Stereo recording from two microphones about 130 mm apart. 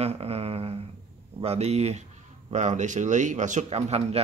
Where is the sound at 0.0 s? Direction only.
50° right (ahead or behind).